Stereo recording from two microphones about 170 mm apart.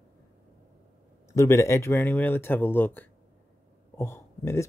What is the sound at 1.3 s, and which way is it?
Speech, 15° left (ahead or behind).